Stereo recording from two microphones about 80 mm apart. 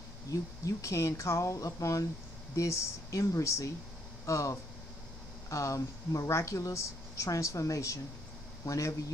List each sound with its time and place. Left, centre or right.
0.3 s speech: left